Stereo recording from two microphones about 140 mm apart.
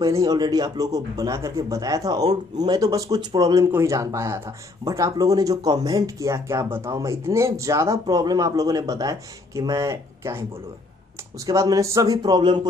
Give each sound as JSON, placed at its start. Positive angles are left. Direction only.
{"t": 0.0, "sound": "speech", "side_deg": -25}
{"t": 11.4, "sound": "speech", "side_deg": -25}